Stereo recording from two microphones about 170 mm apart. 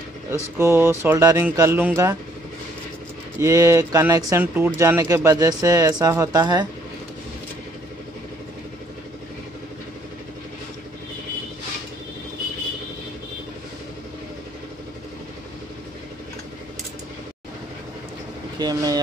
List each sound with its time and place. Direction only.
0.6 s speech: 15° right (ahead or behind)
3.3 s speech: 20° right (ahead or behind)
18.6 s vehicle: 20° right (ahead or behind)